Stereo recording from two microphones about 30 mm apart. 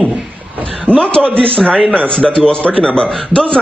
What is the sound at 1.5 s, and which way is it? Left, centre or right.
A man's voice, left.